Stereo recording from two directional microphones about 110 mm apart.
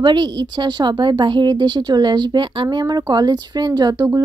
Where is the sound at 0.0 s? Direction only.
45° right (ahead or behind).